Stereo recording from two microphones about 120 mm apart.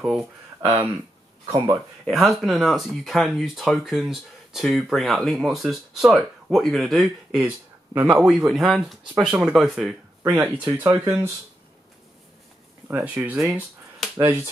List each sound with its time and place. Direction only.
1.4 s speech: 35° right (ahead or behind)
2.0 s speech: centre (ahead or behind)
7.4 s speech: 15° right (ahead or behind)
8.2 s speech: 5° right (ahead or behind)
10.3 s speech: 15° right (ahead or behind)
12.8 s speech: 15° right (ahead or behind)